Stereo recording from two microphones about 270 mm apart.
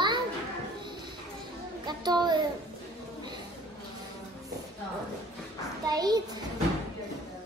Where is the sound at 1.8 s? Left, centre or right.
Centre.